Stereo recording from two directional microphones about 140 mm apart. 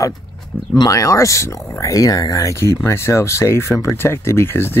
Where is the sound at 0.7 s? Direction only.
25° left (ahead or behind).